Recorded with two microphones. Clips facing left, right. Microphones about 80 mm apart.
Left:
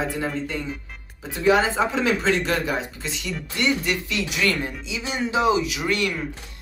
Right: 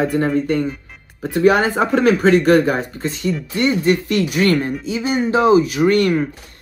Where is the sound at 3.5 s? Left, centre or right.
Right.